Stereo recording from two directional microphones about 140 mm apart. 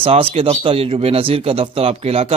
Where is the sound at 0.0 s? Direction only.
45° right (ahead or behind).